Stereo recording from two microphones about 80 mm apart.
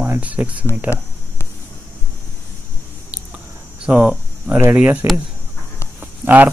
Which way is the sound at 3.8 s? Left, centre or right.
Centre.